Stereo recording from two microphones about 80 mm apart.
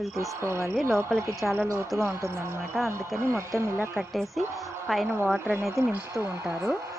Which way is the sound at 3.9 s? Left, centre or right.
Centre.